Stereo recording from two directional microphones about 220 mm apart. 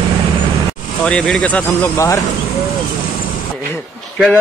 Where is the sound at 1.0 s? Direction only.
5° left (ahead or behind).